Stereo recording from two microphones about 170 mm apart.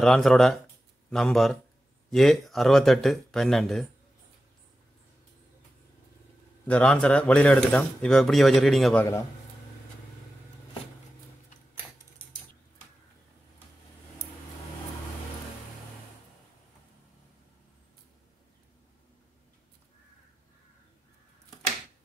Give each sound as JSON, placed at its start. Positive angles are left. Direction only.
{"t": 0.0, "sound": "speech", "side_deg": 5}
{"t": 6.7, "sound": "speech", "side_deg": 5}
{"t": 8.9, "sound": "a man's voice", "side_deg": 15}